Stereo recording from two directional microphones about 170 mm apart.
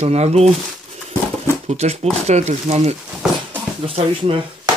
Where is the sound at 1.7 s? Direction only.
40° right (ahead or behind).